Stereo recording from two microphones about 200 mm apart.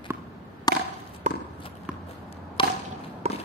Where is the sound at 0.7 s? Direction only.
20° left (ahead or behind).